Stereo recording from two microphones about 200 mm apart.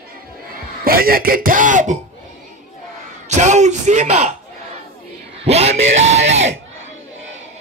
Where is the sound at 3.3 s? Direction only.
35° right (ahead or behind).